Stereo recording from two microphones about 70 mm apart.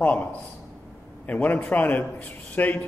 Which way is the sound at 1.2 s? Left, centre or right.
Left.